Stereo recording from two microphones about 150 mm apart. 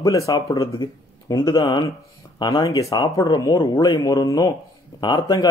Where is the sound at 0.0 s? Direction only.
20° left (ahead or behind).